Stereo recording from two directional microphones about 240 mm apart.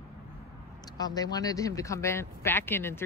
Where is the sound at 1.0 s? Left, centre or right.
Centre.